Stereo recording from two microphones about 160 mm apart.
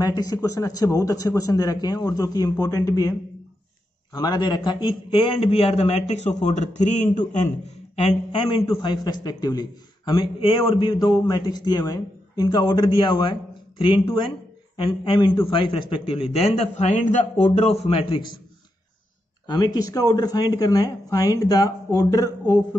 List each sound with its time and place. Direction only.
0.0 s a man's voice: 25° left (ahead or behind); by 7.2 s 50° left (ahead or behind)
7.9 s a man's voice: 35° left (ahead or behind)
17.7 s a man's voice: 35° left (ahead or behind)
19.4 s a man's voice: 25° left (ahead or behind)